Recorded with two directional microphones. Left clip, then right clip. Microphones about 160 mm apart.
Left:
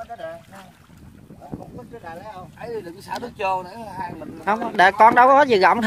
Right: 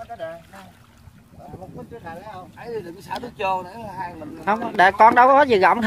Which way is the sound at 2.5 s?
45° left (ahead or behind).